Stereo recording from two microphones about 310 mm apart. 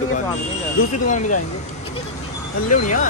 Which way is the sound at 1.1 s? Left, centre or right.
Left.